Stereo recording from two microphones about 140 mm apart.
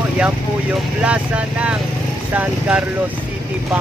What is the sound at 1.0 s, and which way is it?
Speech, 10° right (ahead or behind).